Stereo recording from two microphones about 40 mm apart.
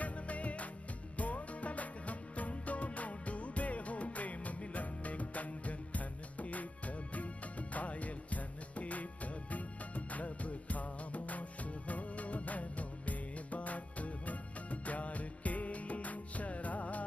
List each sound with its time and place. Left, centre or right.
0.0 s music: left
7.7 s music: left